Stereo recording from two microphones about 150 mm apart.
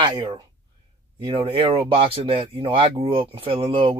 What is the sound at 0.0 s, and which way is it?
Speech, 30° right (ahead or behind).